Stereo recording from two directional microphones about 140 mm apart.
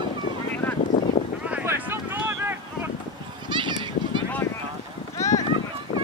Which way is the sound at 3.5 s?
35° right (ahead or behind).